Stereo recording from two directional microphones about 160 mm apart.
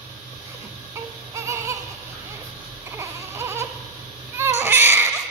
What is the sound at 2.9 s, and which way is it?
Baby cry, 15° right (ahead or behind).